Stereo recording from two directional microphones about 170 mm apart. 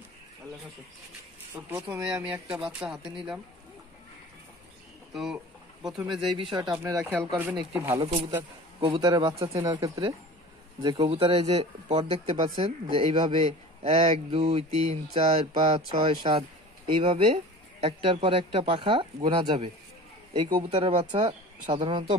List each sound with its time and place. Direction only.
1.8 s speech: 25° right (ahead or behind)
2.2 s speech: 5° right (ahead or behind)
5.1 s a sound: 5° right (ahead or behind)
6.3 s speech: 25° right (ahead or behind)
8.0 s speech: 35° right (ahead or behind)